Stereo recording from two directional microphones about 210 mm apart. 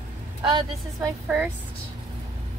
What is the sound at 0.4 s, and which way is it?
Speech, 20° right (ahead or behind).